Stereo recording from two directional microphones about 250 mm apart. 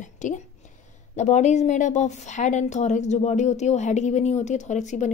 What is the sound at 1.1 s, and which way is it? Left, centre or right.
A woman's voice, left.